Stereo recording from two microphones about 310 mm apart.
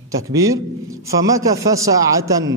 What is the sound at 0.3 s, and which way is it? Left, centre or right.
A man's voice, centre.